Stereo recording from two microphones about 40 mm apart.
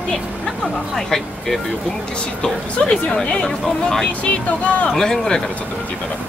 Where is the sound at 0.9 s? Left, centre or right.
Centre.